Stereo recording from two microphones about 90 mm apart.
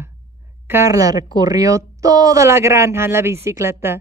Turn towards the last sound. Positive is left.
turn(degrees=-30)  # may be behind; listen again after turning